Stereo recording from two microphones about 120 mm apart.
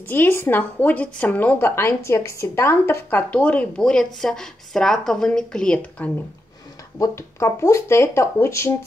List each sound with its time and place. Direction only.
0.1 s speech: 20° left (ahead or behind)
7.0 s speech: 25° left (ahead or behind)